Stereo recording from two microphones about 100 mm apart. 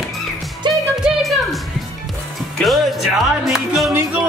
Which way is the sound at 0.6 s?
50° right (ahead or behind).